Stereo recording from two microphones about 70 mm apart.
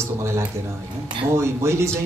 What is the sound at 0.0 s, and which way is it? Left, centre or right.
A man's voice, right.